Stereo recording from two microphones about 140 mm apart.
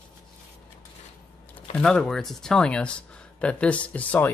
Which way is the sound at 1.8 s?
5° left (ahead or behind).